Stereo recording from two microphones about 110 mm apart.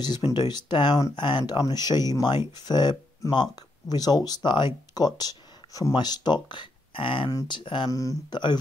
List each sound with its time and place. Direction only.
0.0 s speech: 40° left (ahead or behind)
7.2 s speech: 40° left (ahead or behind)
7.9 s speech: 30° left (ahead or behind)